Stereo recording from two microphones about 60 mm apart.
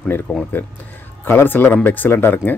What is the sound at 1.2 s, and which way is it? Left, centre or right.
Speech, left.